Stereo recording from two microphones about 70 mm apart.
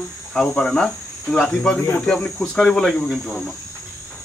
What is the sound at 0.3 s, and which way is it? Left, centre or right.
Cricket, centre.